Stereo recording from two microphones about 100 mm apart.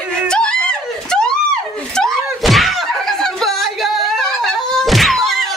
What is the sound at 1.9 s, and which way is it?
Door, 5° left (ahead or behind).